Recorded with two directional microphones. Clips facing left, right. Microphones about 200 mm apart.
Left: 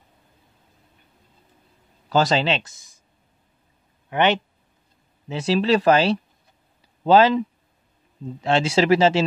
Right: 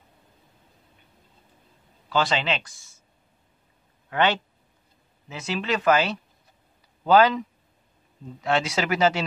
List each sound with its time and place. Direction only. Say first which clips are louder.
2.0 s speech: left 5 dB; 40° left (ahead or behind); by 3.0 s 20° left (ahead or behind)
4.1 s speech: left 3 dB; 20° left (ahead or behind)
5.3 s speech: left 8 dB; 30° left (ahead or behind)